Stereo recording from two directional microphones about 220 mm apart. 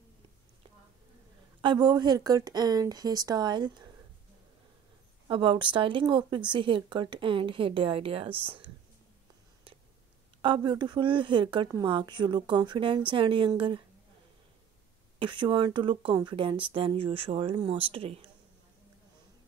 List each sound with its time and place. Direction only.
1.6 s speech: 20° right (ahead or behind)
5.3 s speech: 20° right (ahead or behind)
10.4 s speech: 20° right (ahead or behind)
15.1 s speech: 20° right (ahead or behind)